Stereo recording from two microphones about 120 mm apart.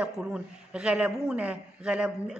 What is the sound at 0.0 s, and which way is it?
Speech, 10° right (ahead or behind).